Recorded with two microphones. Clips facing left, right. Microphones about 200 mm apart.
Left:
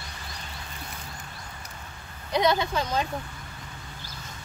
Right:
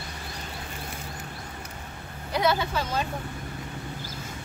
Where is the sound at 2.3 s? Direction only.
5° right (ahead or behind).